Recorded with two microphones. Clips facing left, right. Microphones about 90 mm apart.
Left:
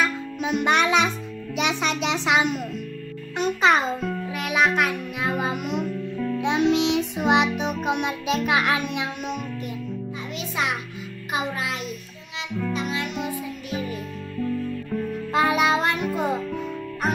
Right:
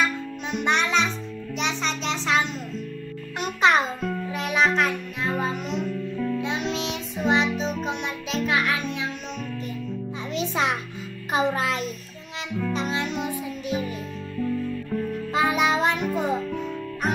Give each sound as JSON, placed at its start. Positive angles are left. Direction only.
{"t": 0.0, "sound": "music", "side_deg": 5}
{"t": 1.6, "sound": "a child's voice", "side_deg": 10}
{"t": 3.3, "sound": "music", "side_deg": 0}
{"t": 6.3, "sound": "music", "side_deg": 15}
{"t": 10.3, "sound": "music", "side_deg": -30}
{"t": 14.4, "sound": "music", "side_deg": 0}